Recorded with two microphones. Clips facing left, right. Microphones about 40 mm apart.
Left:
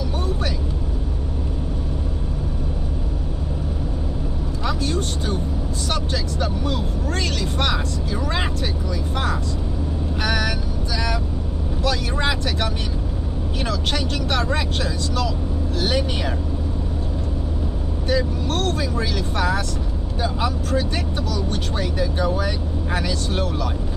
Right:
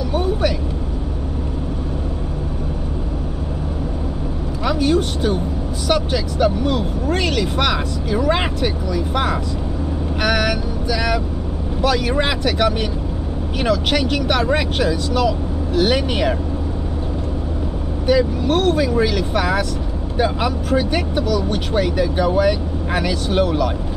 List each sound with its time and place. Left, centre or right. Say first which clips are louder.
4.6 s vehicle: right 7 dB; right
5.9 s speech: right 8 dB; centre
7.2 s speech: right 4 dB; right
18.0 s speech: right 6 dB; centre